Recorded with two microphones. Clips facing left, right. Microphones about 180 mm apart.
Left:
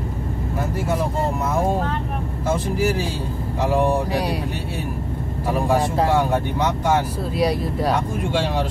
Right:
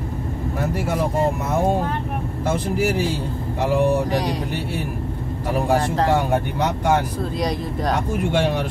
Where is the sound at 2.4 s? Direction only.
60° right (ahead or behind).